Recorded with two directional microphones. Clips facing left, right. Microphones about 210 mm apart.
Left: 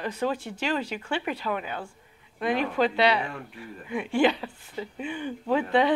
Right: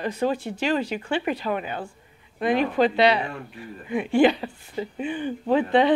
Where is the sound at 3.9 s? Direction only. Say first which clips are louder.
Right 5 dB; 40° right (ahead or behind).